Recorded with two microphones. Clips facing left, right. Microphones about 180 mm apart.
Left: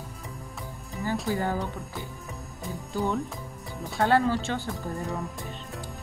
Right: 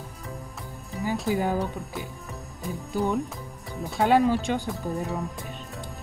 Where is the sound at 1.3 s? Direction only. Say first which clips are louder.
Right 3 dB; 15° right (ahead or behind).